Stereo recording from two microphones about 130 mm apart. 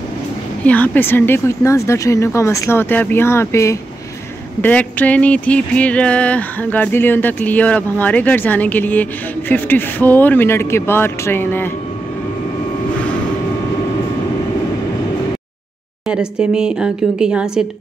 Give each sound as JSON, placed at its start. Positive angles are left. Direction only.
{"t": 0.7, "sound": "speech", "side_deg": 15}
{"t": 4.6, "sound": "a sound", "side_deg": 10}
{"t": 16.1, "sound": "speech", "side_deg": -5}